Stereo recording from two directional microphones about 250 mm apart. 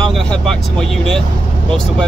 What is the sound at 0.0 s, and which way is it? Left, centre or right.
Speech, centre.